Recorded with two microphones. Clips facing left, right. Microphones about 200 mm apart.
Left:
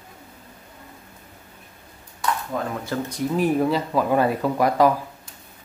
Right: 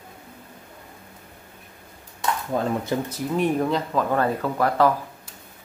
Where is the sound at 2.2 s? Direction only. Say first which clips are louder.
Right 1 dB; 25° right (ahead or behind).